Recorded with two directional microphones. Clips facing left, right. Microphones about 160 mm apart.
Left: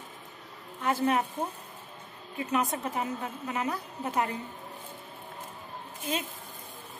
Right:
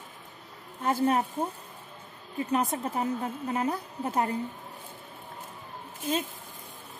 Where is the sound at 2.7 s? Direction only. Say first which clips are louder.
Right 2 dB; 30° right (ahead or behind).